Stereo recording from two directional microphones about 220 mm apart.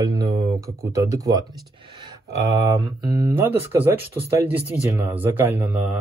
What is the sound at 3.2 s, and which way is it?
Speech, 10° right (ahead or behind).